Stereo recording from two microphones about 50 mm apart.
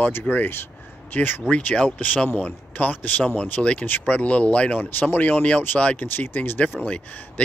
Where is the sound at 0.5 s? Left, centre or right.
Left.